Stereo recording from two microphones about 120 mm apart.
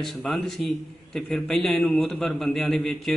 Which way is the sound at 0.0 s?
Centre (ahead or behind).